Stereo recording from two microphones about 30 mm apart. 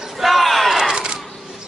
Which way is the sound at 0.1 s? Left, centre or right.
Centre.